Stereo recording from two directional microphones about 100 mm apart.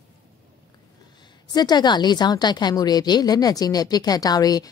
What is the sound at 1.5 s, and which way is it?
A woman's voice, 45° left (ahead or behind).